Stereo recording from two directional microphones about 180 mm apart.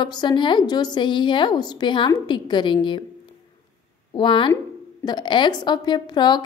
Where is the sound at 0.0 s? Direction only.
25° left (ahead or behind).